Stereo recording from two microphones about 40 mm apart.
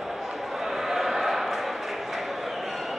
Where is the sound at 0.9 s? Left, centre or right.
Centre.